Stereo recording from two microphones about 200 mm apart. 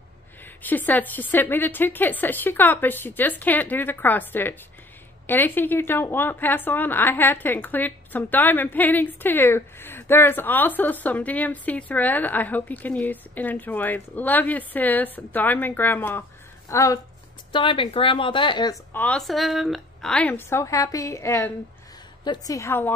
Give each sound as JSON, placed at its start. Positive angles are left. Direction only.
{"t": 0.6, "sound": "a woman's voice", "side_deg": 10}
{"t": 18.9, "sound": "a woman's voice", "side_deg": 5}